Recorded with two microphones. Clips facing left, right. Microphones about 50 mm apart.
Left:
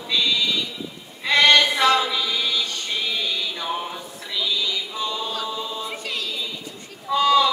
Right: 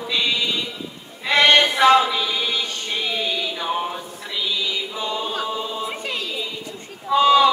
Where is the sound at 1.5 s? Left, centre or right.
Right.